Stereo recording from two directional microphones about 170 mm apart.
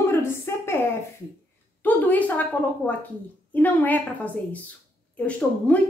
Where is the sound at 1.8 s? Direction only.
10° left (ahead or behind).